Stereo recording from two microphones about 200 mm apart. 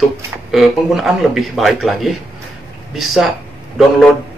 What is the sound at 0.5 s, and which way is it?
Speech, centre (ahead or behind).